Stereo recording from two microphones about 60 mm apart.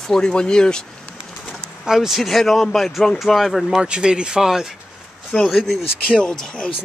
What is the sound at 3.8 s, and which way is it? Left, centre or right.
Speech, centre.